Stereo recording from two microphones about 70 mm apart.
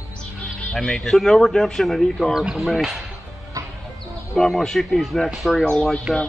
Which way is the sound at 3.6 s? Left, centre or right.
Right.